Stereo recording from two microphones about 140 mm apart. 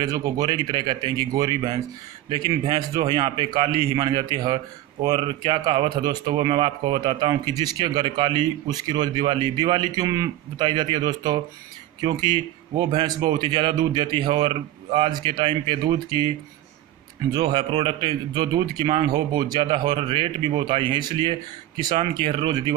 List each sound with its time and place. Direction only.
0.0 s a man's voice: 25° right (ahead or behind)
17.3 s a man's voice: 30° right (ahead or behind)